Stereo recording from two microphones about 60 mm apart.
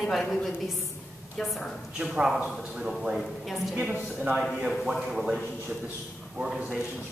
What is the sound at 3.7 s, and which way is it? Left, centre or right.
Speech, right.